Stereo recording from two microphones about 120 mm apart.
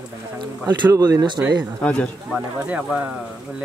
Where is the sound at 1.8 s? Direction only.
10° left (ahead or behind).